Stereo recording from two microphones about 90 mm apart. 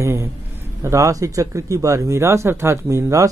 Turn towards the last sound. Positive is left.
turn(degrees=-35)  # may be behind; listen again after turning